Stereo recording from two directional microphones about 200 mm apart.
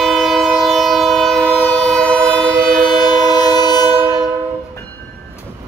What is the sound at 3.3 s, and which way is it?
Train, 20° left (ahead or behind).